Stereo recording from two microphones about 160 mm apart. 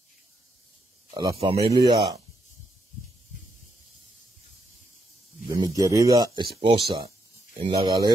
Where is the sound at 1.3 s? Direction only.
40° right (ahead or behind).